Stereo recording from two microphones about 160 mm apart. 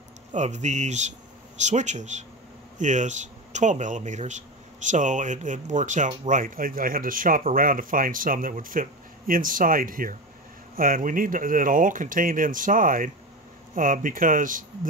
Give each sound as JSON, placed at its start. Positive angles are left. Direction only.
{"t": 0.3, "sound": "speech", "side_deg": -45}